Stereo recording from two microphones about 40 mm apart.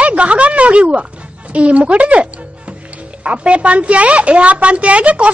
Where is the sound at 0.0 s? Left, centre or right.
Right.